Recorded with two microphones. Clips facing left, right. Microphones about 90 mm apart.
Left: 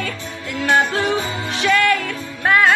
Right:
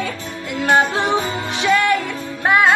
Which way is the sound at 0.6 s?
35° right (ahead or behind).